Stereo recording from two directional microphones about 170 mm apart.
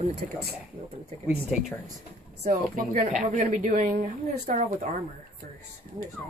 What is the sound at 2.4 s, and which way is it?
A woman's voice, 45° right (ahead or behind).